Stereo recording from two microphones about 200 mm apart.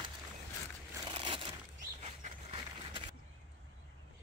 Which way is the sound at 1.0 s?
25° right (ahead or behind).